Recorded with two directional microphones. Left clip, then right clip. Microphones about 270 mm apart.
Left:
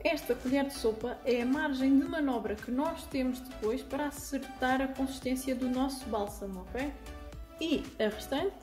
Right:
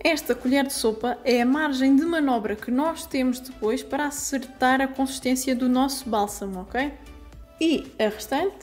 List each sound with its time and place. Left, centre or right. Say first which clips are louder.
0.0 s a woman's voice: right 8 dB; right
7.5 s a woman's voice: right 9 dB; centre